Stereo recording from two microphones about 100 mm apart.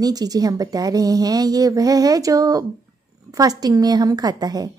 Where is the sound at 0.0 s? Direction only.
40° right (ahead or behind).